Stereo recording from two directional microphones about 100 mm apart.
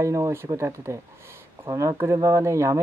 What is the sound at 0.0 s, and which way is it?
Speech, 30° right (ahead or behind).